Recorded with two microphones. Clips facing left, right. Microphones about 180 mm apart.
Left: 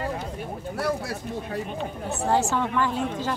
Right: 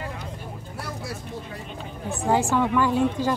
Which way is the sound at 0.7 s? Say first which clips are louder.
Left 7 dB; 65° left (ahead or behind).